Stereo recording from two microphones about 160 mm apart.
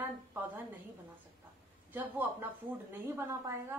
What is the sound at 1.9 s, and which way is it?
Speech, 10° right (ahead or behind).